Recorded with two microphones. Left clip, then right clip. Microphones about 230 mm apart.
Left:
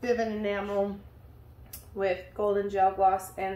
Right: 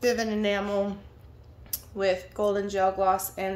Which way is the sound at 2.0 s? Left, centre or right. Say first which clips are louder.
Right 3 dB; right.